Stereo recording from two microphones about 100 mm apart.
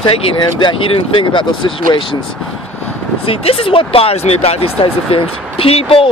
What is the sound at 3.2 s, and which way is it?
Speech, 75° left (ahead or behind).